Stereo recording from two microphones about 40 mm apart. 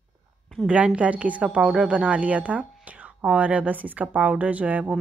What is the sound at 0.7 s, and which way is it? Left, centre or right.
Speech, right.